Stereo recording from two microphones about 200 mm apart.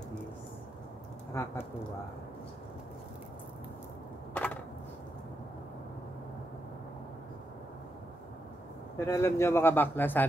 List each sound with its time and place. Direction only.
1.3 s speech: 15° left (ahead or behind)
4.3 s a sound: 10° left (ahead or behind)
8.9 s speech: 10° left (ahead or behind)